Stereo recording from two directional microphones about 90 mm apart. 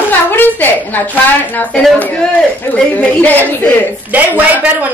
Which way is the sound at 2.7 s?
20° left (ahead or behind).